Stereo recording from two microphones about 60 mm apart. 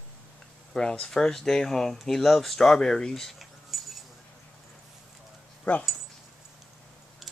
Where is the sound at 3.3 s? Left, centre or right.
Centre.